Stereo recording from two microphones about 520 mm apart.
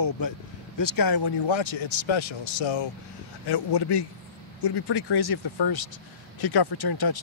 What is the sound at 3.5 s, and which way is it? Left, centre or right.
Speech, left.